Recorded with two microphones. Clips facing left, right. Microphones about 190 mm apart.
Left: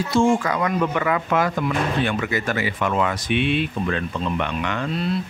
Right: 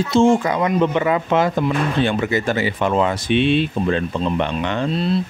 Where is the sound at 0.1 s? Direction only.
25° right (ahead or behind).